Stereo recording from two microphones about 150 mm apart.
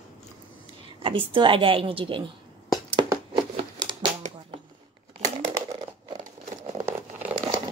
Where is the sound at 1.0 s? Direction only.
35° right (ahead or behind).